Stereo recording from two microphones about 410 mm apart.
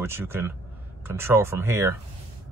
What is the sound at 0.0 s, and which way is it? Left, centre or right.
Speech, centre.